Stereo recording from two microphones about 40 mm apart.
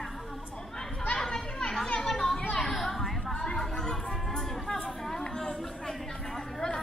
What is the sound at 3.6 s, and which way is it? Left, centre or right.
Chatter, centre.